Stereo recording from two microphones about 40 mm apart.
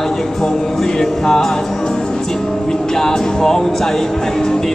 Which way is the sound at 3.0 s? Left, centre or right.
Centre.